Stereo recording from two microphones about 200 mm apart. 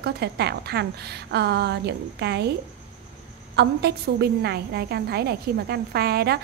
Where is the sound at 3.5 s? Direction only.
55° right (ahead or behind).